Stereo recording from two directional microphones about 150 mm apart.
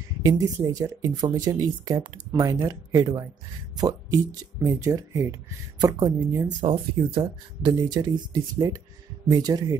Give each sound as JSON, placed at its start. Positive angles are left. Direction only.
{"t": 0.2, "sound": "speech", "side_deg": -25}
{"t": 6.6, "sound": "speech", "side_deg": -35}